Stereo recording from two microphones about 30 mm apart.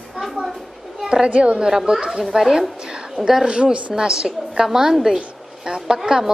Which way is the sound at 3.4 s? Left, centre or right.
Right.